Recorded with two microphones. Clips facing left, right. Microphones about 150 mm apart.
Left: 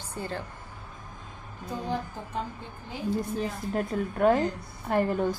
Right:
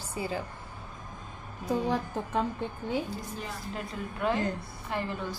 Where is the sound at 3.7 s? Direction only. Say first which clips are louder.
Left 8 dB; 45° left (ahead or behind).